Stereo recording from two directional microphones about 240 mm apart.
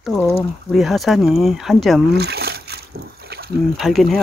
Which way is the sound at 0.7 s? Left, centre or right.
Centre.